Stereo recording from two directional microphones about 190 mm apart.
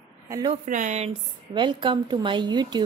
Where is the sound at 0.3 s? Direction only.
20° right (ahead or behind).